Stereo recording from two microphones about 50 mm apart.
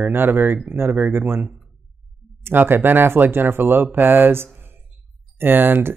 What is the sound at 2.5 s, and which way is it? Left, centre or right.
Speech, right.